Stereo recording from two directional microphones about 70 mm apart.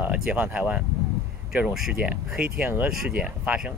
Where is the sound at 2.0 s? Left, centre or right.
Centre.